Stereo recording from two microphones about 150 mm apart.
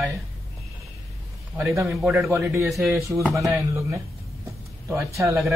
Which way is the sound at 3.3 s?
20° right (ahead or behind).